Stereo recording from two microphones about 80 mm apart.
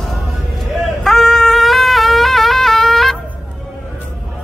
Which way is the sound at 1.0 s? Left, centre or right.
Centre.